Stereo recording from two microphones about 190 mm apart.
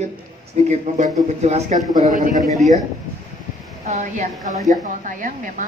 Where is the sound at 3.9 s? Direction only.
40° right (ahead or behind).